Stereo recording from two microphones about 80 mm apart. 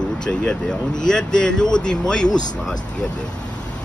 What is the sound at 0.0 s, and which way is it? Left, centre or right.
Speech, centre.